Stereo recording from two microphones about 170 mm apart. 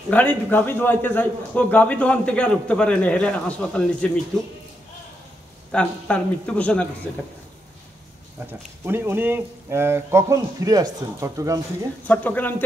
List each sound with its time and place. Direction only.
0.1 s a man's voice: 10° left (ahead or behind)
5.7 s a man's voice: 5° left (ahead or behind)
8.8 s a man's voice: 15° right (ahead or behind)
12.1 s a man's voice: 10° left (ahead or behind)